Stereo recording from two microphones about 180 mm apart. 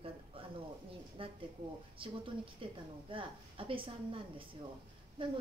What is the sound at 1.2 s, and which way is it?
Speech, 30° right (ahead or behind).